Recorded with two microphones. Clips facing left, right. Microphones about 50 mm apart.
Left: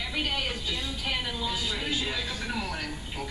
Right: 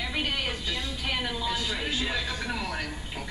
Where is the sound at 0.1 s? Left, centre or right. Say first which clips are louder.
Left 2 dB; centre.